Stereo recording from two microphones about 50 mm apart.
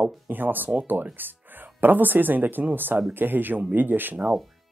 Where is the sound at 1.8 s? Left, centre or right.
Right.